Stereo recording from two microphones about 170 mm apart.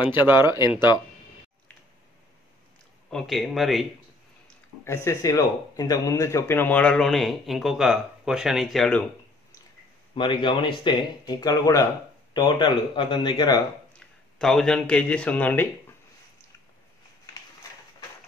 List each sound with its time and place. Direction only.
0.0 s speech: 25° left (ahead or behind)
3.1 s speech: centre (ahead or behind)
4.8 s speech: 15° left (ahead or behind); by 9.0 s centre (ahead or behind)
10.1 s speech: 30° left (ahead or behind)
13.9 s speech: 5° left (ahead or behind)